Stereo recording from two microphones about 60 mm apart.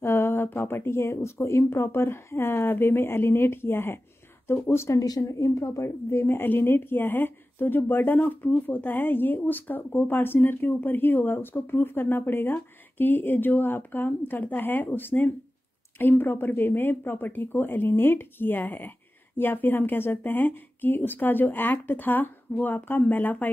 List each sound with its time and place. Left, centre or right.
0.0 s a woman's voice: left
4.9 s a woman's voice: left